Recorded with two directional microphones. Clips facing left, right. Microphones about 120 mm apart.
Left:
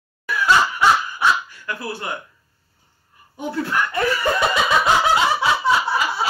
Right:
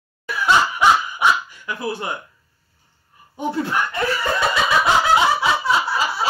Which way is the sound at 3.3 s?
25° right (ahead or behind).